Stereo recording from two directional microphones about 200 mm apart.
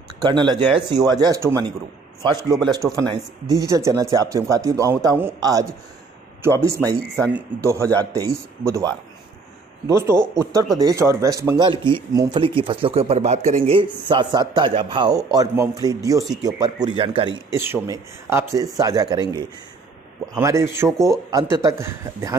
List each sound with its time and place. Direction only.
0.2 s speech: 20° right (ahead or behind)
9.8 s speech: 15° right (ahead or behind)
17.5 s speech: 10° right (ahead or behind)
20.3 s speech: 15° right (ahead or behind)